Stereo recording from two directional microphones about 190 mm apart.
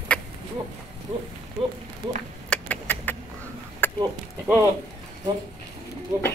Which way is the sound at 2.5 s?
10° left (ahead or behind).